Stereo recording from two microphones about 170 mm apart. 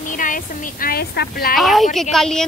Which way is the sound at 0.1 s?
50° left (ahead or behind).